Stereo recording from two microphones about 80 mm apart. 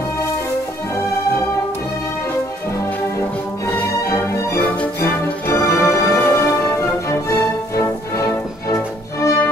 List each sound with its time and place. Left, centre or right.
5.0 s music: left